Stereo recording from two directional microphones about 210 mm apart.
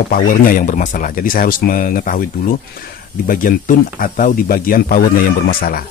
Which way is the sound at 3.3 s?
40° left (ahead or behind).